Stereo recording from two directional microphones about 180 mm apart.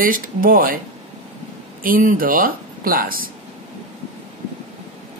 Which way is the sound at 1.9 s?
50° right (ahead or behind).